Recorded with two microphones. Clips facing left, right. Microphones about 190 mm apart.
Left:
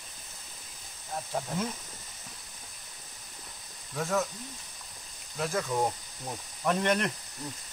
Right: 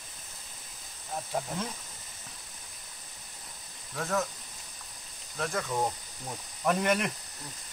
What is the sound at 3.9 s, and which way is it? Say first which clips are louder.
Speech: left 1 dB; centre (ahead or behind).